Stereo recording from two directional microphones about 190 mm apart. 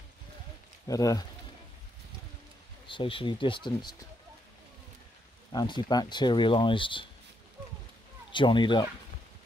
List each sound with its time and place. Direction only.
0.8 s speech: 20° left (ahead or behind)
2.9 s speech: 30° left (ahead or behind)
5.5 s speech: 20° left (ahead or behind)
8.3 s speech: 25° left (ahead or behind)